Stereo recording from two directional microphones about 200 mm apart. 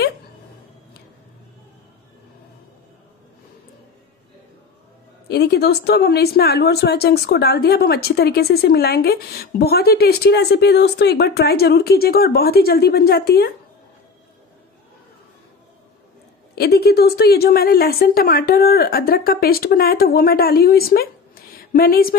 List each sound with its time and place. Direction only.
5.3 s a woman's voice: 55° left (ahead or behind)
16.5 s a woman's voice: 50° left (ahead or behind)